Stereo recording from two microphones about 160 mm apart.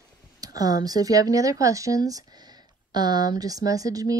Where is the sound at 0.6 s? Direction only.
25° right (ahead or behind).